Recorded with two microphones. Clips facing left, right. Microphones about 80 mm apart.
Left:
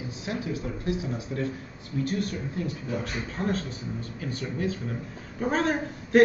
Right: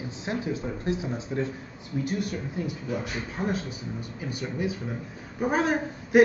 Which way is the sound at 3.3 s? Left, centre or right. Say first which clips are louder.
Even; centre.